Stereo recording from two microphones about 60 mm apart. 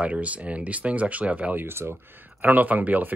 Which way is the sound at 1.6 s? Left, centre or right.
Right.